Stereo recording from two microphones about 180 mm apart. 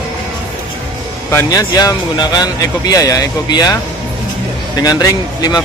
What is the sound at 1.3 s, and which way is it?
Speech, 20° left (ahead or behind).